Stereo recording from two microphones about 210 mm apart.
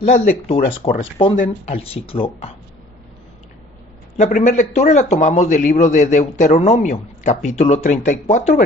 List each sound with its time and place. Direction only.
0.0 s a man's voice: 35° left (ahead or behind)
4.2 s a man's voice: 35° left (ahead or behind)